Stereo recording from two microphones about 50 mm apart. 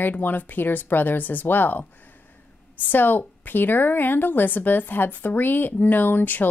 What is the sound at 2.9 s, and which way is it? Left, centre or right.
A woman's voice, left.